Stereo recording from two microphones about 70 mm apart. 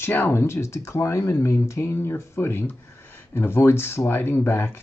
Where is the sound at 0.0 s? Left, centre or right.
Left.